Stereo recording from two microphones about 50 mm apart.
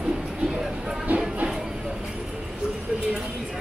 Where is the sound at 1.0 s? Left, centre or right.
Right.